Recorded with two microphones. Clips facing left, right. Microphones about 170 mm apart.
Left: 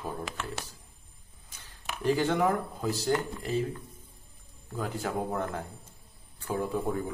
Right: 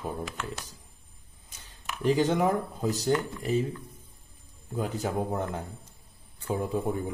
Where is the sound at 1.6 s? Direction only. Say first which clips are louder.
Right 2 dB; 20° right (ahead or behind).